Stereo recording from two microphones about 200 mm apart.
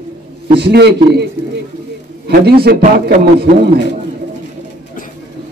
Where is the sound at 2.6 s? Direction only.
50° right (ahead or behind).